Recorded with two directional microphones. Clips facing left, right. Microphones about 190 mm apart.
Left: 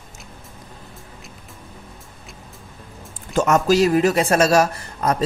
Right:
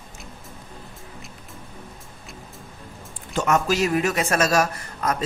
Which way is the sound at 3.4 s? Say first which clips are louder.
Left 5 dB; 40° left (ahead or behind).